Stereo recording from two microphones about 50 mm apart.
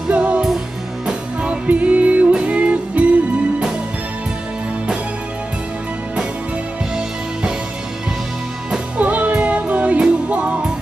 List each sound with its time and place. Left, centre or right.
0.1 s music: right
1.4 s music: right
8.9 s music: right